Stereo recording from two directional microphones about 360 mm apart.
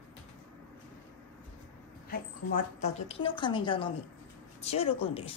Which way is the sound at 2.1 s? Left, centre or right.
Left.